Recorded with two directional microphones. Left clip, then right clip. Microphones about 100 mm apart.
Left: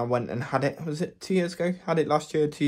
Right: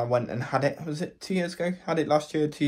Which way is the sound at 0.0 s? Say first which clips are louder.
Right 1 dB; 50° left (ahead or behind).